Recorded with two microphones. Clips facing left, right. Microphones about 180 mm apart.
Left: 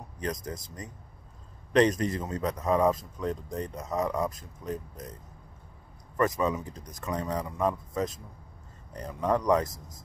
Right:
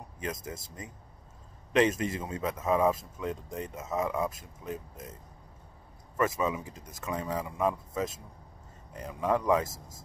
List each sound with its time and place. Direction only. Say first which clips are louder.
0.2 s speech: left 3 dB; 25° right (ahead or behind)
1.7 s a man's voice: left 2 dB; 5° right (ahead or behind)
6.1 s speech: left 2 dB; 5° right (ahead or behind)
9.7 s speech: even; 25° right (ahead or behind)